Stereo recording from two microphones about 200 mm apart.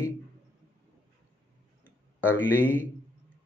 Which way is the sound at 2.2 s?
10° left (ahead or behind).